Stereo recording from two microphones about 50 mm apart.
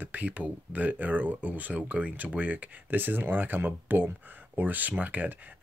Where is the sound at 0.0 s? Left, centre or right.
Right.